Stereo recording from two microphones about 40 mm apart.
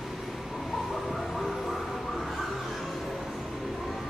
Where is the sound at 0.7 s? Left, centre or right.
Centre.